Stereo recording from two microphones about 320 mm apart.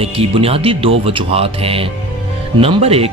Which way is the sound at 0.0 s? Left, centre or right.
Centre.